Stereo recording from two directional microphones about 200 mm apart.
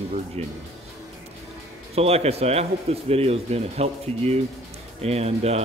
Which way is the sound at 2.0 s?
30° right (ahead or behind).